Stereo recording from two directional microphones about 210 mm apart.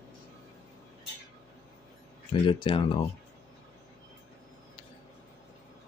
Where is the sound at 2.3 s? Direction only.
25° left (ahead or behind).